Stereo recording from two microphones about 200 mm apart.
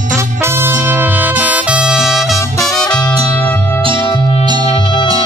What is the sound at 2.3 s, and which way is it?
Music, 15° left (ahead or behind).